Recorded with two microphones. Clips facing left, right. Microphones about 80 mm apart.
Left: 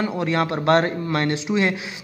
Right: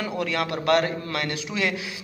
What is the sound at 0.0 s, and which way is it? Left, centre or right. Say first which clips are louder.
A man's voice: left 4 dB; left.